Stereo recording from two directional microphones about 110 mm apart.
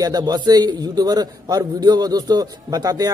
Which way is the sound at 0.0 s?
35° right (ahead or behind).